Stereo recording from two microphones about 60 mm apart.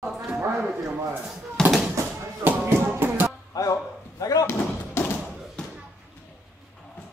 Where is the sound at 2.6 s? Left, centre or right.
Right.